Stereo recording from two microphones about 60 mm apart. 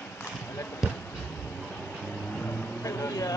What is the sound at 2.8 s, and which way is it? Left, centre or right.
Vehicle, left.